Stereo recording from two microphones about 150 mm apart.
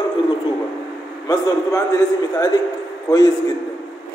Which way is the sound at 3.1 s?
25° left (ahead or behind).